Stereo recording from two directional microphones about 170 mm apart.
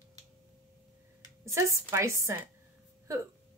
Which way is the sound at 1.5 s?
15° right (ahead or behind).